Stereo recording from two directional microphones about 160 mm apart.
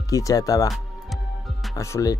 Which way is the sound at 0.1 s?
20° left (ahead or behind).